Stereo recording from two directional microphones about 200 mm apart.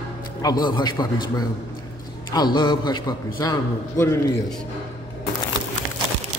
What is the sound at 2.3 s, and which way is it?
A man's voice, 20° left (ahead or behind).